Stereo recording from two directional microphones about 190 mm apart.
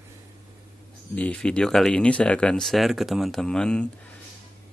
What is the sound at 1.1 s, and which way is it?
Speech, 5° left (ahead or behind).